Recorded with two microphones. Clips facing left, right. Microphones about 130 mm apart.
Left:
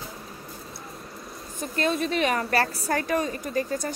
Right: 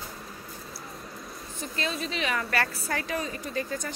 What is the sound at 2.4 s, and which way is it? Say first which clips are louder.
Speech: left 4 dB; 30° left (ahead or behind).